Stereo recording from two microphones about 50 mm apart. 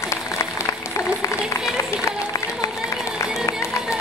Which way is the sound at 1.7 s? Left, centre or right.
Left.